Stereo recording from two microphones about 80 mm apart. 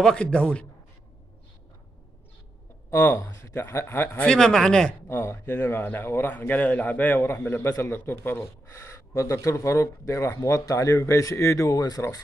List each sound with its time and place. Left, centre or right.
0.0 s speech: centre
2.9 s speech: left
4.2 s speech: centre
5.0 s speech: left; by 7.2 s centre
7.2 s speech: left